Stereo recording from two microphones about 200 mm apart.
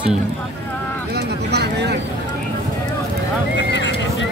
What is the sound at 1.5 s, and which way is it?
Vehicle, 55° right (ahead or behind).